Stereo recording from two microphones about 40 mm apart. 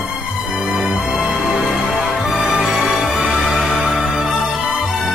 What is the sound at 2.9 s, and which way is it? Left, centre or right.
Music, centre.